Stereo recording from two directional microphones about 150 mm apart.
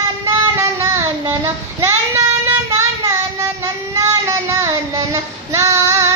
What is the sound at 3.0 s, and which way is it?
Child singing, 20° right (ahead or behind).